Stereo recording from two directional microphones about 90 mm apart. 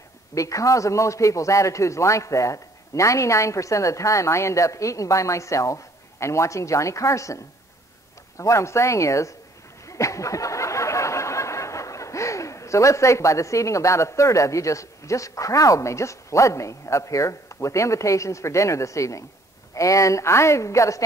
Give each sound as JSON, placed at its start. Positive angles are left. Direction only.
{"t": 0.3, "sound": "a man's voice", "side_deg": 35}
{"t": 8.4, "sound": "a man's voice", "side_deg": 35}
{"t": 9.8, "sound": "a sound", "side_deg": 35}
{"t": 19.7, "sound": "a man's voice", "side_deg": 35}